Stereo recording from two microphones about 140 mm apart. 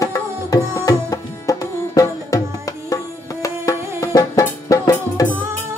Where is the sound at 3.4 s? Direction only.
25° left (ahead or behind).